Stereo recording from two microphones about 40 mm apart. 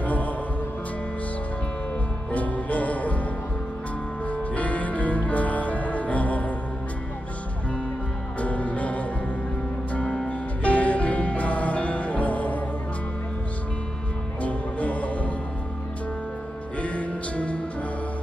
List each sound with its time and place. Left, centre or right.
0.0 s music: left
2.3 s music: left
4.3 s music: left
8.4 s music: left
14.4 s music: left
16.8 s music: left